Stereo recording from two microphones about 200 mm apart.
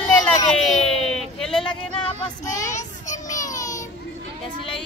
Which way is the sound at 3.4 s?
15° left (ahead or behind).